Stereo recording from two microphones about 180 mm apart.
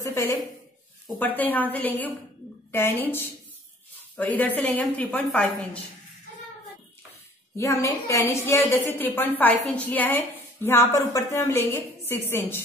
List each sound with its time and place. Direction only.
0.0 s a sound: 15° left (ahead or behind)
1.2 s a woman's voice: 10° left (ahead or behind)
7.5 s a woman's voice: 15° left (ahead or behind)